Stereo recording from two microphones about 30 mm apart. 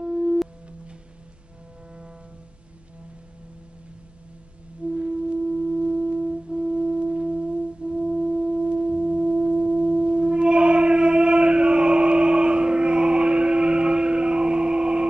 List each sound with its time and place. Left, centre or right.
0.0 s sine wave: right
4.8 s music: right
5.7 s foghorn: right
8.2 s sine wave: right